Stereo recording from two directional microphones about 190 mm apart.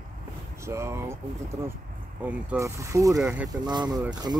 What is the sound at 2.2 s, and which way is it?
Speech, 10° right (ahead or behind).